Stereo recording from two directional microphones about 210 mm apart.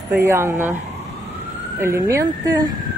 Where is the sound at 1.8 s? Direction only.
15° right (ahead or behind).